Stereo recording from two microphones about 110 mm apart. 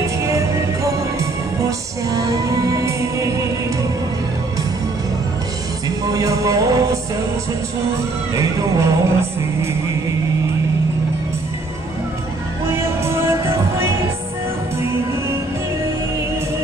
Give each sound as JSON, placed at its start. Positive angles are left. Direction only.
{"t": 0.0, "sound": "music", "side_deg": -25}
{"t": 5.9, "sound": "music", "side_deg": -30}
{"t": 8.4, "sound": "music", "side_deg": -30}
{"t": 12.6, "sound": "music", "side_deg": -25}